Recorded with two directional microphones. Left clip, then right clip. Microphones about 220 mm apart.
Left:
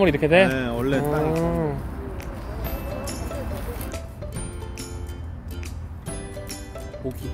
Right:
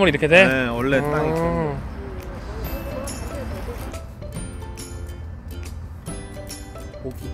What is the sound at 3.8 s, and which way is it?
Music, centre (ahead or behind).